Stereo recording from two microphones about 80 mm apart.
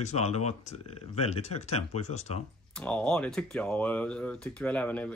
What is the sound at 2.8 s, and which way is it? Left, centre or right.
Speech, centre.